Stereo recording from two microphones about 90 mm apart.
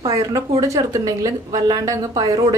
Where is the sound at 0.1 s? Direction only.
40° right (ahead or behind).